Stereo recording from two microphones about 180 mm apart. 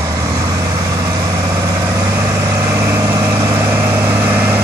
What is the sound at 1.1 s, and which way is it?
Vehicle, 20° right (ahead or behind).